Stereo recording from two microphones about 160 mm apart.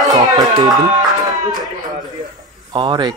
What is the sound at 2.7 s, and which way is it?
Speech, 30° right (ahead or behind).